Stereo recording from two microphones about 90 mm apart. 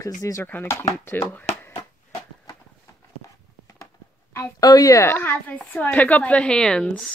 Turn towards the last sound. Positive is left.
turn(degrees=10)  # may be behind; listen again after turning